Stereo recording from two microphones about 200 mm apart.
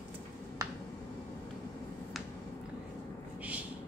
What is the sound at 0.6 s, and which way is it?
Finger snapping, 15° right (ahead or behind).